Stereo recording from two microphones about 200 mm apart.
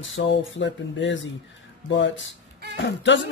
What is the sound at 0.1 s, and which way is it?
Speech, 65° left (ahead or behind).